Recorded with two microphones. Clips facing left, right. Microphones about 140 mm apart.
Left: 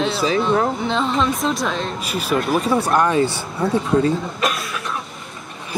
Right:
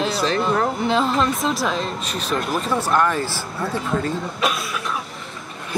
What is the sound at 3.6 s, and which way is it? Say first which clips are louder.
Speech: left 6 dB; centre (ahead or behind).